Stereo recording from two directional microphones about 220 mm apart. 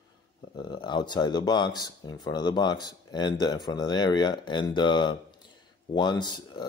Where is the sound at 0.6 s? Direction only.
20° left (ahead or behind).